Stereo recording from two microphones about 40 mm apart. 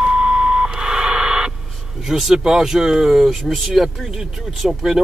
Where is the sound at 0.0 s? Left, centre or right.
Centre.